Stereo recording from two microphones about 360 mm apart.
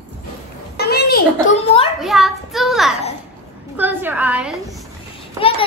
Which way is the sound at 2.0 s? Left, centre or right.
Centre.